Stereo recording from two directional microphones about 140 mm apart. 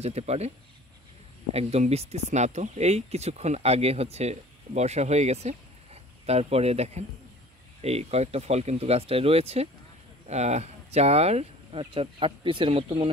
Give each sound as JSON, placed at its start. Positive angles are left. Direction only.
{"t": 0.0, "sound": "speech", "side_deg": -50}
{"t": 1.5, "sound": "speech", "side_deg": -50}